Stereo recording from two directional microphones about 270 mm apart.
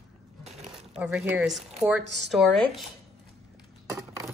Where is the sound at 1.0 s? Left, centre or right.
Centre.